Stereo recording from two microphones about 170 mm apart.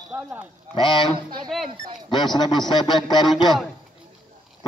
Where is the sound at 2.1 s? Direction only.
25° left (ahead or behind).